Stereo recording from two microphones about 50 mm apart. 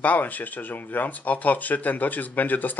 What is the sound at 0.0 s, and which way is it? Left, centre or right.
Speech, left.